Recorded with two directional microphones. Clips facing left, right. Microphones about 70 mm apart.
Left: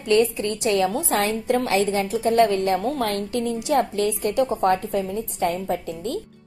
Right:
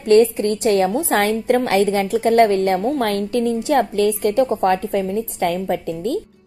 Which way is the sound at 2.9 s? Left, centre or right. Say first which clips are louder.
Right 5 dB; right.